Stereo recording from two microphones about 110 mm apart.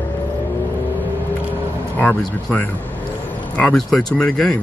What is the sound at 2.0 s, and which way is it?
Speech, 15° left (ahead or behind).